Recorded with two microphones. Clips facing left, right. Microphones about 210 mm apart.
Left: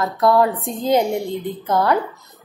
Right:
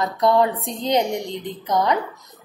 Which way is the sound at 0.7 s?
5° left (ahead or behind).